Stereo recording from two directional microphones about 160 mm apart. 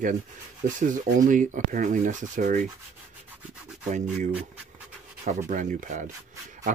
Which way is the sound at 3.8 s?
50° right (ahead or behind).